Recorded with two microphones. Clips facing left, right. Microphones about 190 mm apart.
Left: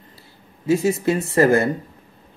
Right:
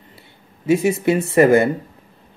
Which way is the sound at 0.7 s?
25° right (ahead or behind).